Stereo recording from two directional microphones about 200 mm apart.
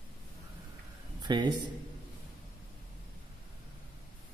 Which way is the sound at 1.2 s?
20° right (ahead or behind).